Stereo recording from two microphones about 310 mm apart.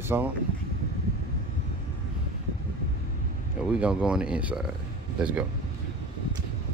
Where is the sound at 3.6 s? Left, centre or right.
Centre.